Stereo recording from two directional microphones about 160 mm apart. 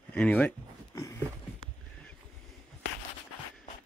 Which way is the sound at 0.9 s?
20° left (ahead or behind).